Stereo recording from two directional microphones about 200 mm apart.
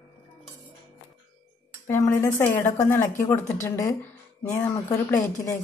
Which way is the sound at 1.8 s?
15° left (ahead or behind).